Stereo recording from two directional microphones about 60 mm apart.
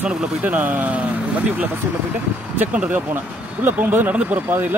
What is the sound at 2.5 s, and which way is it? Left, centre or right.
Speech, right.